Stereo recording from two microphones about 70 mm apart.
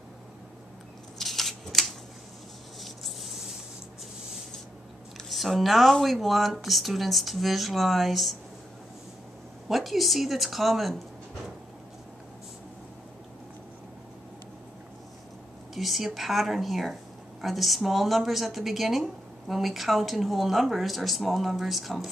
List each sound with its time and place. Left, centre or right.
1.1 s a sound: centre
5.1 s a woman's voice: centre
9.7 s a woman's voice: centre
15.7 s a woman's voice: centre